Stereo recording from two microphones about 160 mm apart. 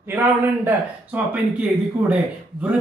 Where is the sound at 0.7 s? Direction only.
10° right (ahead or behind).